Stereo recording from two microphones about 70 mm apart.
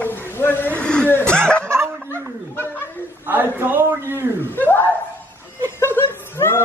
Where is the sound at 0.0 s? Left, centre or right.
Left.